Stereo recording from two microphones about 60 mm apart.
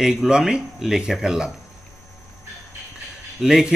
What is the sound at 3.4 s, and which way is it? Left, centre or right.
Speech, centre.